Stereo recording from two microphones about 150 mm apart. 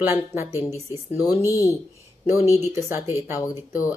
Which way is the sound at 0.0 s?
15° right (ahead or behind).